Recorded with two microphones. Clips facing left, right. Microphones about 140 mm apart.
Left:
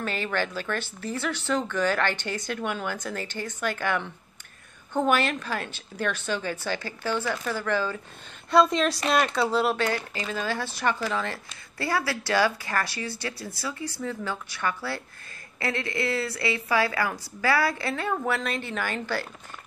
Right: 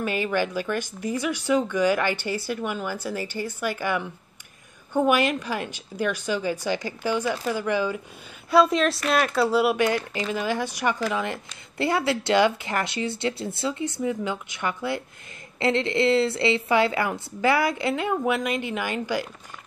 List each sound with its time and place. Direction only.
0.0 s speech: 10° right (ahead or behind)
8.5 s speech: 5° right (ahead or behind)